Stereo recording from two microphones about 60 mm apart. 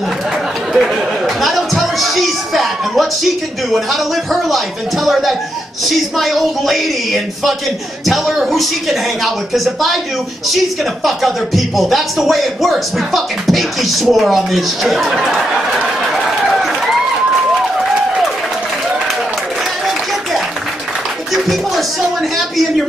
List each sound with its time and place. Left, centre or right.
0.7 s chatter: centre
3.7 s speech: centre
11.1 s speech: centre
16.1 s applause: centre
17.5 s a sound: centre
21.3 s a sound: centre